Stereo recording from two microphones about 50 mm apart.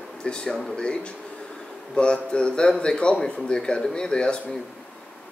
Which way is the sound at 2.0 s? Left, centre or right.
Left.